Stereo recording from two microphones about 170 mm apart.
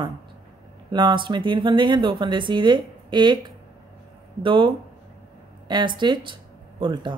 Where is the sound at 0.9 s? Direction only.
30° right (ahead or behind).